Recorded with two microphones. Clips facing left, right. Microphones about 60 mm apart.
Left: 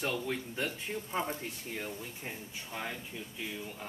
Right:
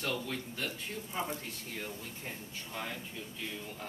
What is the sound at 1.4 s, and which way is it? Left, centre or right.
Speech, centre.